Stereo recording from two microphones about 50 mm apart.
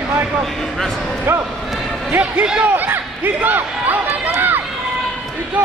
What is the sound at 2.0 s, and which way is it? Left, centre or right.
Speech, right.